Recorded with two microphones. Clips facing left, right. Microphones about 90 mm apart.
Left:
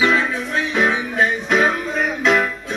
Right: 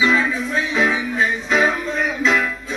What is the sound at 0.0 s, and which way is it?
Music, 55° left (ahead or behind).